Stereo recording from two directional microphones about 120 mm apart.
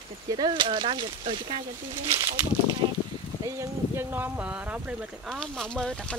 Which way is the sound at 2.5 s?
20° left (ahead or behind).